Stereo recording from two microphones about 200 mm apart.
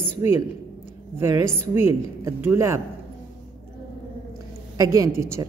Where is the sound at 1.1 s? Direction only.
15° right (ahead or behind).